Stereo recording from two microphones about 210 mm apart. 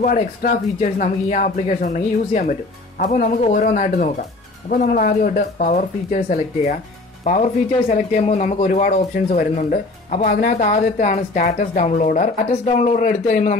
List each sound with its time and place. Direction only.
0.0 s a woman's voice: 40° left (ahead or behind)
7.9 s a woman's voice: 35° left (ahead or behind)